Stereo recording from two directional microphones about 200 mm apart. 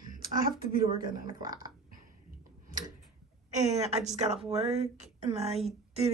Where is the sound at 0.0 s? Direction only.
45° right (ahead or behind).